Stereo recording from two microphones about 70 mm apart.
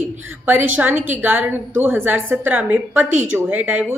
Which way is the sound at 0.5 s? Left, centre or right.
Right.